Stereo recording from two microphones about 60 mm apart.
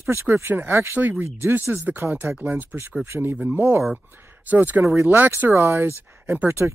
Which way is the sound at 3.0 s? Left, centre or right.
Right.